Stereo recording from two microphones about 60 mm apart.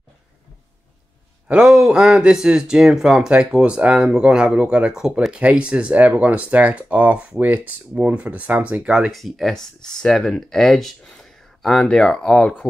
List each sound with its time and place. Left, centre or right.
1.5 s speech: centre
9.1 s speech: centre